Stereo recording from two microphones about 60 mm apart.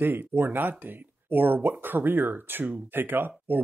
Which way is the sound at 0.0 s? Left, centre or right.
Right.